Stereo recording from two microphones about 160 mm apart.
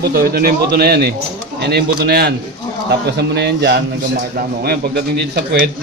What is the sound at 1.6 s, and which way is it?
Speech, 85° right.